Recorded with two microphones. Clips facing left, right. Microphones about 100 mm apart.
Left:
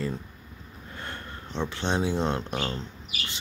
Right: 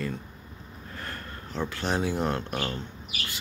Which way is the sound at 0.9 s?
25° left (ahead or behind).